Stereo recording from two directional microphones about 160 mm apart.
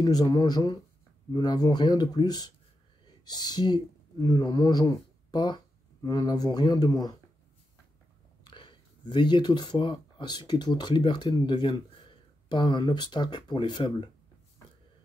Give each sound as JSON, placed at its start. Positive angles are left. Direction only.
{"t": 0.0, "sound": "speech", "side_deg": 25}
{"t": 8.5, "sound": "speech", "side_deg": 30}